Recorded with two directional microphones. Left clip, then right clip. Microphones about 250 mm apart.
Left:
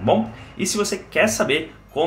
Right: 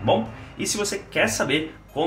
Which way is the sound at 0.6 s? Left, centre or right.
Left.